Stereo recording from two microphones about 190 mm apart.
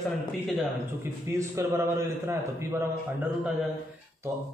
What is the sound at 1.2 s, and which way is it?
A man's voice, 15° right (ahead or behind).